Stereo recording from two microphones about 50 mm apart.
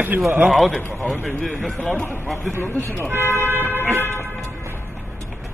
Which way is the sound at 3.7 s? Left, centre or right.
Left.